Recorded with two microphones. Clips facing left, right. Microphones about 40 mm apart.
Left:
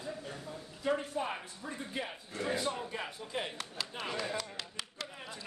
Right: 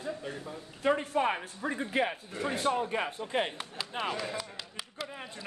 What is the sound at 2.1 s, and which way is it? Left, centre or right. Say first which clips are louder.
Speech: right 3 dB; right.